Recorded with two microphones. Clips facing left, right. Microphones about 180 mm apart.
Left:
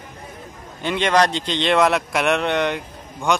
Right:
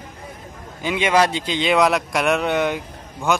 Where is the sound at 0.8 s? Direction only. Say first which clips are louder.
Even; 5° right (ahead or behind).